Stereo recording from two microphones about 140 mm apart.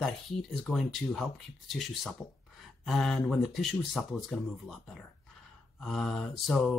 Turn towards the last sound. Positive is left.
turn(degrees=0)  # may be behind; listen again after turning